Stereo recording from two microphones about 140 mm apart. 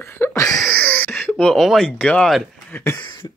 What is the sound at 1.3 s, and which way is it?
Speech, centre (ahead or behind).